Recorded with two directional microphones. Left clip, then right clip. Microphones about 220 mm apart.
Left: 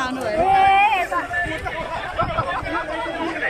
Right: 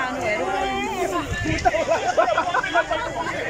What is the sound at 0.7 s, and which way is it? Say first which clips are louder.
Run: left 10 dB; 45° left (ahead or behind).